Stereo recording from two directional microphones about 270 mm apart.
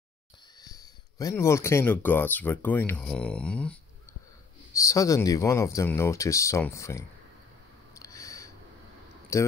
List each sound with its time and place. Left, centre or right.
0.6 s speech: centre
4.7 s speech: centre
7.9 s a sound: centre
9.3 s speech: centre